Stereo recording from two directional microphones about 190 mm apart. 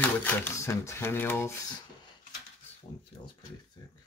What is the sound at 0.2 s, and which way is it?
Speech, 10° left (ahead or behind).